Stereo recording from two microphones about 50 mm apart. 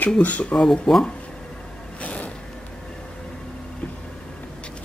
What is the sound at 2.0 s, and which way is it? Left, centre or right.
Vehicle, left.